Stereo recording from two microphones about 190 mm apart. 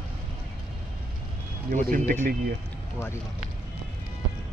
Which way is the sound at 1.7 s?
45° right (ahead or behind).